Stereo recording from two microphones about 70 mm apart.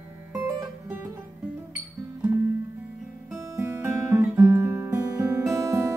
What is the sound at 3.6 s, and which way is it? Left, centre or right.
Music, right.